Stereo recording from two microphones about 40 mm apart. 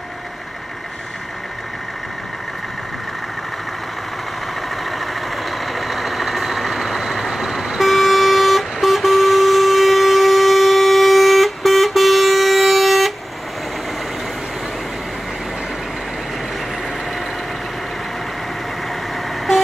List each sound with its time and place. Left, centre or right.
4.9 s vehicle: centre